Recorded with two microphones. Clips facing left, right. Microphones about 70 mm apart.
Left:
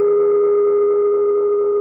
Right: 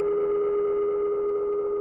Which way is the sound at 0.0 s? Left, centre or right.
Left.